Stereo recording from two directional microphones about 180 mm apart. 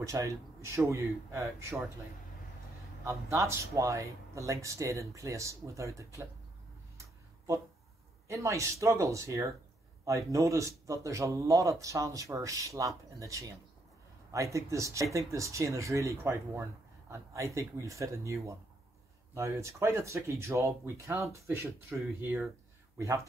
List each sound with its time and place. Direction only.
0.0 s speech: 15° right (ahead or behind)
3.1 s speech: 15° right (ahead or behind)
8.3 s speech: 15° right (ahead or behind)